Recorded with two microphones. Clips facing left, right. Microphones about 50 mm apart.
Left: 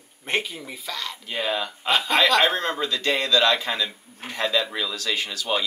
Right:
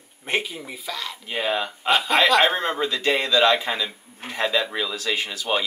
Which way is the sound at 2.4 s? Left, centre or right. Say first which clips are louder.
Right 1 dB; centre.